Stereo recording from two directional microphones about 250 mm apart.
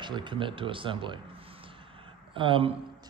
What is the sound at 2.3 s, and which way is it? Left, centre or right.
Speech, right.